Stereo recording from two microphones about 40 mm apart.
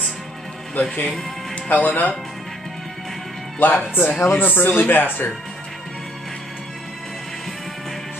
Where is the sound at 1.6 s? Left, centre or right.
Left.